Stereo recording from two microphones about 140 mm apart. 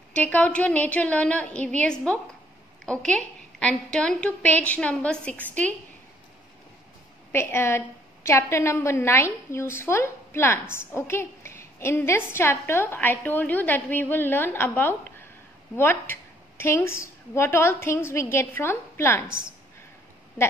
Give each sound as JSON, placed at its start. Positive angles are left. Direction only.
{"t": 0.1, "sound": "a woman's voice", "side_deg": 10}
{"t": 7.3, "sound": "a woman's voice", "side_deg": 20}